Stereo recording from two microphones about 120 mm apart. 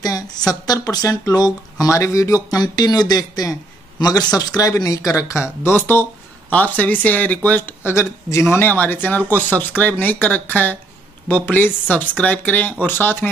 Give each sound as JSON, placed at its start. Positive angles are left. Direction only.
{"t": 0.8, "sound": "speech", "side_deg": 30}